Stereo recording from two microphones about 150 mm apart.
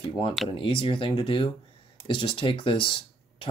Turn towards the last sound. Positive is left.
turn(degrees=35)  # may be behind; listen again after turning